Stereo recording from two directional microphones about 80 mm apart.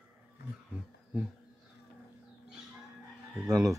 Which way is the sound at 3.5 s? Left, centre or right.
Right.